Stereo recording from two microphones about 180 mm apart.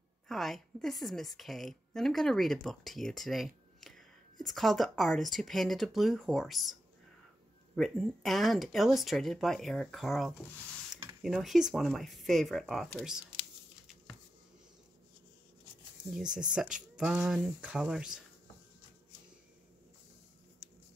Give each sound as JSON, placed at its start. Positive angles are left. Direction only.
{"t": 0.3, "sound": "a woman's voice", "side_deg": 0}
{"t": 16.1, "sound": "a woman's voice", "side_deg": -5}